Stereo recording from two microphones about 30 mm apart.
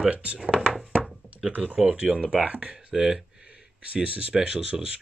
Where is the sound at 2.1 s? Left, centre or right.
Right.